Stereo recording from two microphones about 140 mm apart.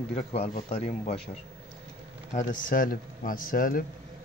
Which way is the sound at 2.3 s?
80° left.